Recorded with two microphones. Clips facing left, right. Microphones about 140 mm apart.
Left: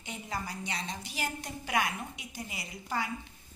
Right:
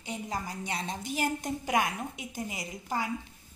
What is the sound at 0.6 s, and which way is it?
A woman's voice, 50° right (ahead or behind).